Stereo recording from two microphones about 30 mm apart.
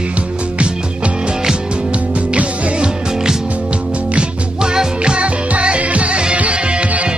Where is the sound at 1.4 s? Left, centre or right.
Right.